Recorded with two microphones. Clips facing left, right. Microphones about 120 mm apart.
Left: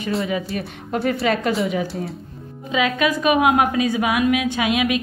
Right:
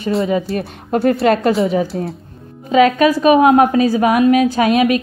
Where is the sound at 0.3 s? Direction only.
35° right (ahead or behind).